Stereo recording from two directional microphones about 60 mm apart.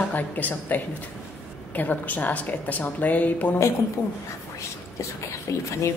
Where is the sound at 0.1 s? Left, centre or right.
Left.